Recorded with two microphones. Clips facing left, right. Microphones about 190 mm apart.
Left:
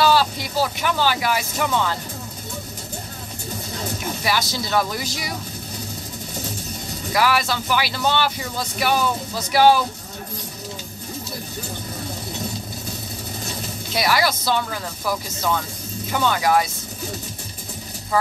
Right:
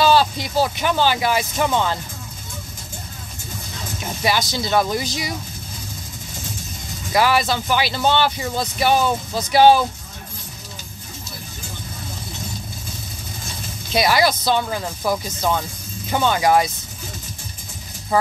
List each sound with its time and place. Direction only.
0.0 s speech: 20° right (ahead or behind)
4.2 s speech: 20° right (ahead or behind)
7.2 s speech: 20° right (ahead or behind)
13.9 s speech: 20° right (ahead or behind)
18.1 s speech: 20° right (ahead or behind)